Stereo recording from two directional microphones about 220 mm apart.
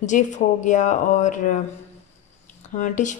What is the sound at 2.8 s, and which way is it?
Speech, 35° left (ahead or behind).